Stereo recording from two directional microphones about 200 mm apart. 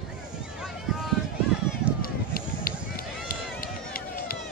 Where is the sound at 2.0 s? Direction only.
45° left (ahead or behind).